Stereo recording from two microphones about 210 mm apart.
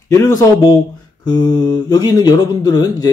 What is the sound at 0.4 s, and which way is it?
A man's voice, 20° left (ahead or behind).